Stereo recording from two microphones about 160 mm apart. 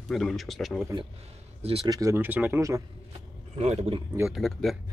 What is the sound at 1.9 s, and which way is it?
Speech, 20° right (ahead or behind).